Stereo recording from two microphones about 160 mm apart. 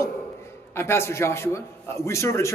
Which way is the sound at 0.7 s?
15° left (ahead or behind).